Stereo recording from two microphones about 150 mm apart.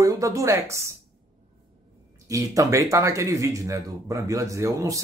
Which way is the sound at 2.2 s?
20° right (ahead or behind).